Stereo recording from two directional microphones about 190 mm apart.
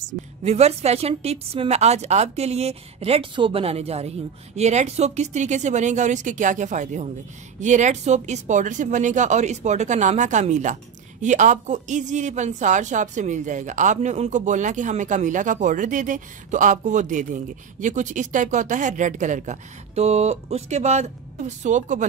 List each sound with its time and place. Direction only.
0.0 s speech: 35° right (ahead or behind)